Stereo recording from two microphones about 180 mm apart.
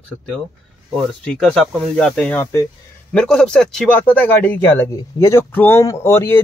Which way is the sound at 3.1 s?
5° left (ahead or behind).